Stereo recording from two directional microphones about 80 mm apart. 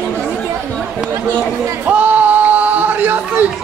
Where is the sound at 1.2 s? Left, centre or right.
Right.